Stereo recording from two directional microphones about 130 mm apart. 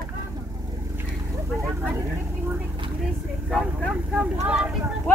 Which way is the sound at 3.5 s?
Centre (ahead or behind).